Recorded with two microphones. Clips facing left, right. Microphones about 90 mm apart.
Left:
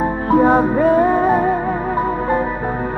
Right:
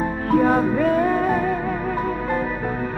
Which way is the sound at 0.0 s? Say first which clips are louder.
Left 4 dB; 30° left (ahead or behind).